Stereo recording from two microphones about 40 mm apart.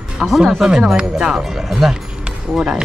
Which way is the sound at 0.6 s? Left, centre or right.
Centre.